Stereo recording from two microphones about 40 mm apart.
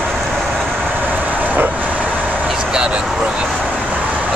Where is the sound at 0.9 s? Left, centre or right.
Right.